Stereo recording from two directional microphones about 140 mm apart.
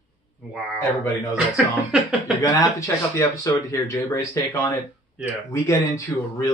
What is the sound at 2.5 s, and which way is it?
Speech, 20° left (ahead or behind).